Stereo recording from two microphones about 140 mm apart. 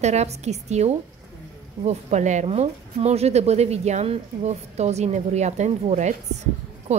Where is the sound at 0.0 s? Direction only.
50° right (ahead or behind).